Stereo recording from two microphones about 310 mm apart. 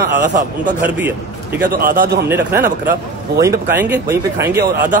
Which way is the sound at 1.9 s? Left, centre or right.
Right.